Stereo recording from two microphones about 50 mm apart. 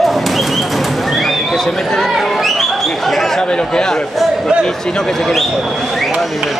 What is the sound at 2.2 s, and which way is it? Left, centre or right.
Chatter, centre.